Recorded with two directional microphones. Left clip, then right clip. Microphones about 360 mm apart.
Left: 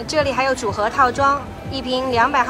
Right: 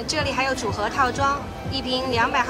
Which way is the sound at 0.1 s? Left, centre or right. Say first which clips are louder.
Left 5 dB; centre.